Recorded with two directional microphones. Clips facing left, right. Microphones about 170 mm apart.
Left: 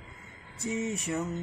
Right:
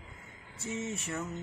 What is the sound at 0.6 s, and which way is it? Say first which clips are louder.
Mantra: left 5 dB; 15° left (ahead or behind).